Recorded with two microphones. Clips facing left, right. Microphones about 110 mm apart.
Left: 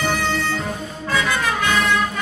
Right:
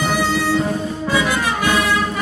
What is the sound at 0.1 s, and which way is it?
Music, 5° right (ahead or behind).